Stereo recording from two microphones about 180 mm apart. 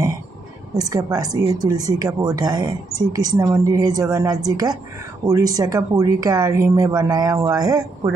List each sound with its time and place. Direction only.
0.7 s speech: 20° right (ahead or behind)